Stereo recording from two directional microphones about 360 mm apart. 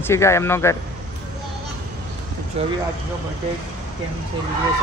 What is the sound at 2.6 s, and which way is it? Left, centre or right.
Speech, centre.